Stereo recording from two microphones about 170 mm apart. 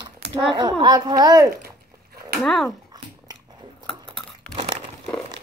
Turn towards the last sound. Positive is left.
turn(degrees=5)  # may be behind; listen again after turning